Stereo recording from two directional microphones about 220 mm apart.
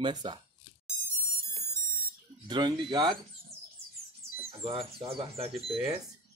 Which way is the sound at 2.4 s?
20° right (ahead or behind).